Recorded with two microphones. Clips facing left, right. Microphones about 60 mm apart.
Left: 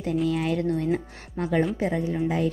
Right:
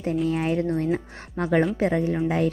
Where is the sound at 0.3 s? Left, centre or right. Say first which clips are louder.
Right 2 dB; right.